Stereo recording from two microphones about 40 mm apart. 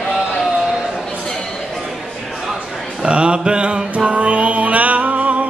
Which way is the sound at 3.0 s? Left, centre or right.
Right.